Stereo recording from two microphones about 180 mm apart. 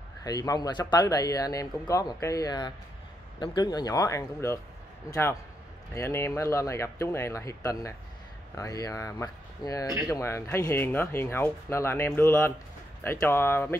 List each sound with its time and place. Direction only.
0.2 s speech: 20° left (ahead or behind)